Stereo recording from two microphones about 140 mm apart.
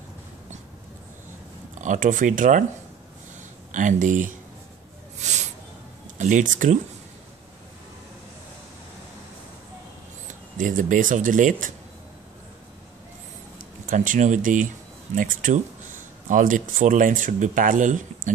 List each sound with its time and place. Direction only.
1.8 s speech: 65° right (ahead or behind)
3.7 s speech: 65° right (ahead or behind)
5.2 s a sound: 55° right (ahead or behind)
6.1 s speech: 65° right (ahead or behind)
10.6 s speech: 70° right (ahead or behind)
13.8 s speech: 65° right (ahead or behind)